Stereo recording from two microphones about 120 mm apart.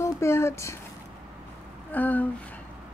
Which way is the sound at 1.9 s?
15° left (ahead or behind).